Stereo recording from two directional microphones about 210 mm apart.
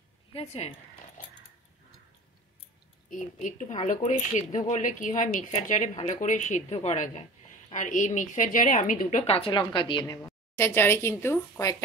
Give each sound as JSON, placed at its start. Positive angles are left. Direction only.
{"t": 0.3, "sound": "zipper", "side_deg": 30}
{"t": 3.1, "sound": "a woman's voice", "side_deg": 40}
{"t": 10.2, "sound": "speech", "side_deg": 10}